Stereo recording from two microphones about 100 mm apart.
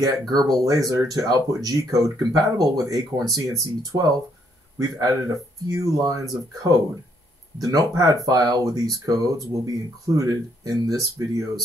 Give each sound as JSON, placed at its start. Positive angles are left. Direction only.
{"t": 0.3, "sound": "speech", "side_deg": -40}